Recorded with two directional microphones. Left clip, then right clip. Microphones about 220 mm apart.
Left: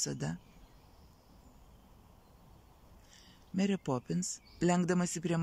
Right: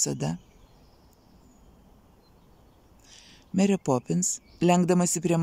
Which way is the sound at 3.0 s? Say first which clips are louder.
Right 10 dB; 15° right (ahead or behind).